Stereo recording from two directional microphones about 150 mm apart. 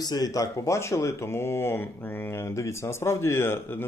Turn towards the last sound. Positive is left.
turn(degrees=15)  # may be behind; listen again after turning